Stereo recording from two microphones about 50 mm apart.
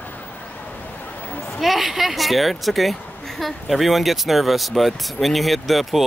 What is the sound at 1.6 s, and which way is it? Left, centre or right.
Speech, centre.